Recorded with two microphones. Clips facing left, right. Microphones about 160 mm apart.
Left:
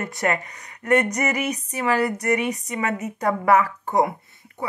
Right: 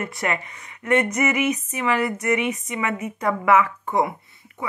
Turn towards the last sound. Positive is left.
turn(degrees=40)  # may be behind; listen again after turning